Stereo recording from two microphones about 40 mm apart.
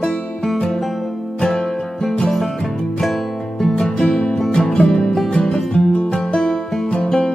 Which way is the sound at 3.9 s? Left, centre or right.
Centre.